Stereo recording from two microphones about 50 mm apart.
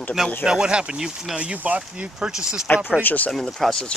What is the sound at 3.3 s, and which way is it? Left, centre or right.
Speech, centre.